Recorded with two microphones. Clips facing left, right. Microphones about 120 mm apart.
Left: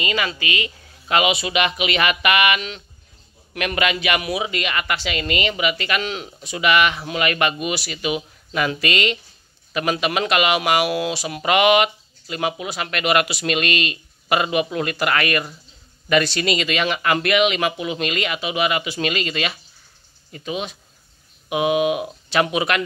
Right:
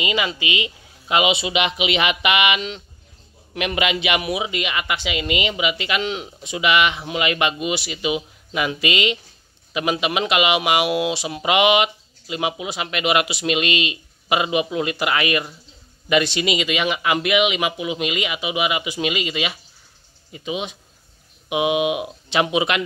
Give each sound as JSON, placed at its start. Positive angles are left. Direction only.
{"t": 0.0, "sound": "speech", "side_deg": -15}